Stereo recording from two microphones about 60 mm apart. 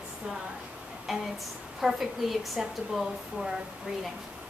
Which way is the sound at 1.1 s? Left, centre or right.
Centre.